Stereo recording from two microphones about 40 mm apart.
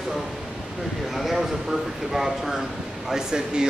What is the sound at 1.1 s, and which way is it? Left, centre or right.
Speech, centre.